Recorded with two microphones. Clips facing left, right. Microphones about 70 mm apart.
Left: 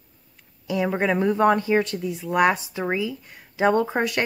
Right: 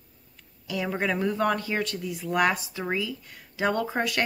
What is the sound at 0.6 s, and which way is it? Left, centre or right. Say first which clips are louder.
Speech: left 5 dB; left.